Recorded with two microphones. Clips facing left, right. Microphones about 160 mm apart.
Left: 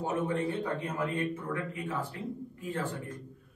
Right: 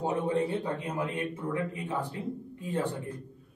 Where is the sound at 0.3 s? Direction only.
30° right (ahead or behind).